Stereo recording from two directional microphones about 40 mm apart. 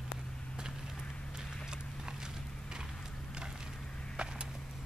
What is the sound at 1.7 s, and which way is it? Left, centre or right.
Horse, centre.